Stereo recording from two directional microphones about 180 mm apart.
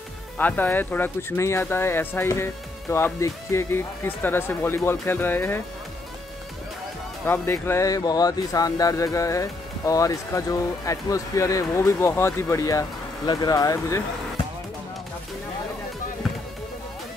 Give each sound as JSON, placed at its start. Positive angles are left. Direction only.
{"t": 0.4, "sound": "speech", "side_deg": 10}
{"t": 7.2, "sound": "speech", "side_deg": 15}